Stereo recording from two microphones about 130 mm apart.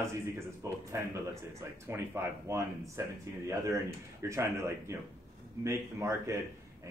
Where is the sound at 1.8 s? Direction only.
20° right (ahead or behind).